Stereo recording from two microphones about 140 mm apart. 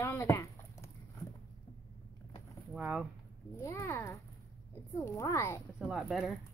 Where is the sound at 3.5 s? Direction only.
20° left (ahead or behind).